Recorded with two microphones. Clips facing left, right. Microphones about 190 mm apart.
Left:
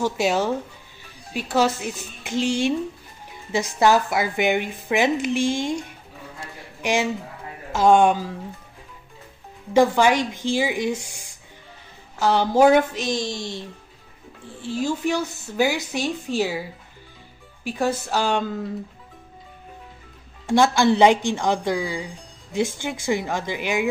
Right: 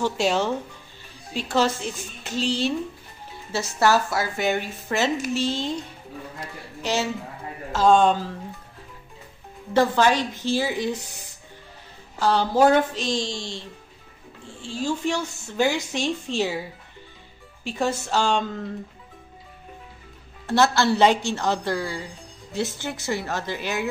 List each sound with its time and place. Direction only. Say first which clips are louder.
0.0 s speech: left 1 dB; 10° left (ahead or behind)
9.8 s speech: left 2 dB; 15° left (ahead or behind)
12.3 s speech: left 2 dB; 10° left (ahead or behind)
14.6 s speech: left 2 dB; 15° left (ahead or behind)
17.6 s speech: left 2 dB; centre (ahead or behind)
20.4 s speech: left 3 dB; 15° left (ahead or behind)